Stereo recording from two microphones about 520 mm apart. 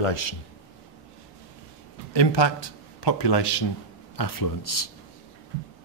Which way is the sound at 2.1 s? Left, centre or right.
Left.